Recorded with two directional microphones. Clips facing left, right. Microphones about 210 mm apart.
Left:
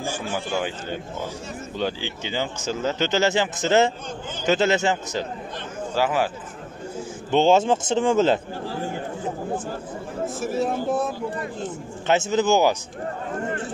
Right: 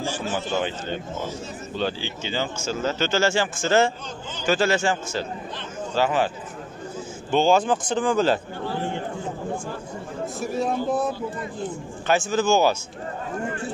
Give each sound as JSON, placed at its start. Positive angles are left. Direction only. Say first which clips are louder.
{"t": 1.8, "sound": "speech", "louder": "even", "side_deg": 15}
{"t": 5.9, "sound": "speech", "louder": "even", "side_deg": 10}
{"t": 7.2, "sound": "speech", "louder": "left 2 dB", "side_deg": 20}
{"t": 10.2, "sound": "speech", "louder": "left 1 dB", "side_deg": 0}
{"t": 12.1, "sound": "speech", "louder": "left 1 dB", "side_deg": 20}